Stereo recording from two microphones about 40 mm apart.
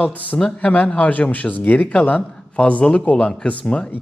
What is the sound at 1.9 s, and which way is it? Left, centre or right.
Speech, left.